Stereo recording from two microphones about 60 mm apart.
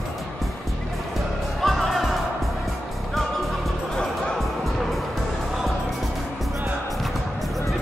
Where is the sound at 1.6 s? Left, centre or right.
Centre.